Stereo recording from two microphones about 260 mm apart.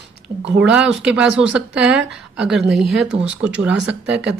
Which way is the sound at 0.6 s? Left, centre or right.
Centre.